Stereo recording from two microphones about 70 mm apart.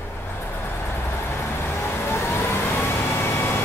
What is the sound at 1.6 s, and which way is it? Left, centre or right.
Vehicle, left.